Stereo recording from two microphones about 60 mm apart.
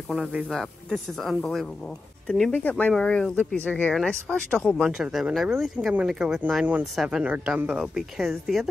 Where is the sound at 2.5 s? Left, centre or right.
Left.